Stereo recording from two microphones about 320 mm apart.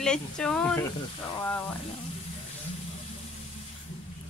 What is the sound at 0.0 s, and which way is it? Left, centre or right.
Speech, centre.